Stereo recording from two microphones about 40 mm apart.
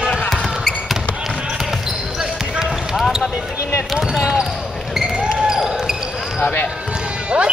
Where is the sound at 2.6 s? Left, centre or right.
Centre.